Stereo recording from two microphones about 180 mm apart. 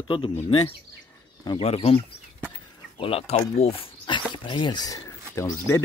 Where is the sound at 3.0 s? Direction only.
30° left (ahead or behind).